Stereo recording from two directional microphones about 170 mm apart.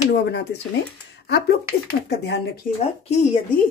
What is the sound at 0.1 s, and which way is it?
Speech, 90° left.